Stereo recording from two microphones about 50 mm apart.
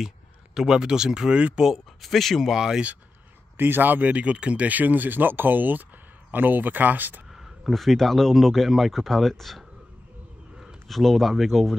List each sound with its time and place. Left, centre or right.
0.6 s speech: centre
1.6 s speech: centre
2.5 s speech: centre
3.5 s speech: right
7.3 s speech: centre
10.9 s speech: centre